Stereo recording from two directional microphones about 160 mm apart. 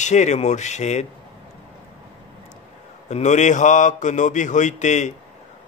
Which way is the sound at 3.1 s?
45° left (ahead or behind).